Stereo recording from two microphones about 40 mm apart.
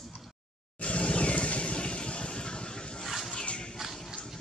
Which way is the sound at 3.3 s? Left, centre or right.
Left.